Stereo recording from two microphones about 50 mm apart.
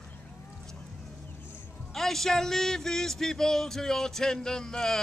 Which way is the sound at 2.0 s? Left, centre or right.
Centre.